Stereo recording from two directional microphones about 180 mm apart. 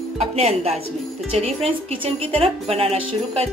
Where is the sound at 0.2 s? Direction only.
35° right (ahead or behind).